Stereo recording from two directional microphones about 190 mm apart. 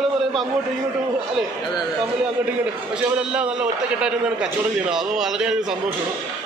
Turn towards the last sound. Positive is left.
turn(degrees=0)  # may be behind; listen again after turning